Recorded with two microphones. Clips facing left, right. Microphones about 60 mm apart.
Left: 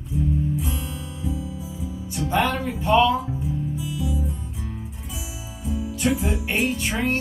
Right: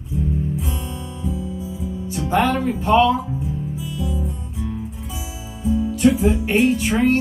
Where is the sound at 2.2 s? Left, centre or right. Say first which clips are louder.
Right 4 dB; right.